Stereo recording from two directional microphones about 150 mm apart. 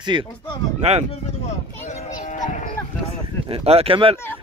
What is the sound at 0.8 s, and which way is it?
Speech, 45° right (ahead or behind).